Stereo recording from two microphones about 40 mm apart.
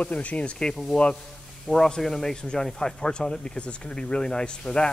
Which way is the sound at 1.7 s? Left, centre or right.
Centre.